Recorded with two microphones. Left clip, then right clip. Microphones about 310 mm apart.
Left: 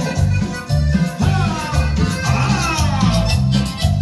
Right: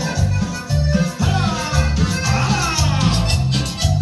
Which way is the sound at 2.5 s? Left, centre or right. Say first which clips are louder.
Even; left.